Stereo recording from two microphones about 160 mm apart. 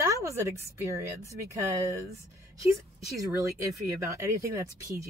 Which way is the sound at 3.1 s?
20° right (ahead or behind).